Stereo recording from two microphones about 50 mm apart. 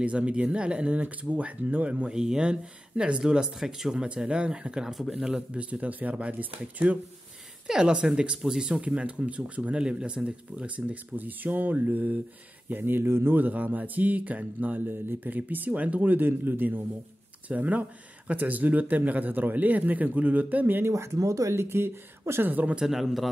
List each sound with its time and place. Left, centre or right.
0.0 s speech: right
2.0 s speech: centre
4.9 s speech: centre
5.5 s speech: right
7.6 s speech: centre
8.8 s speech: right
11.1 s speech: right
13.4 s speech: right
14.9 s speech: right
17.5 s speech: right
20.8 s speech: right
22.5 s speech: right
22.8 s speech: centre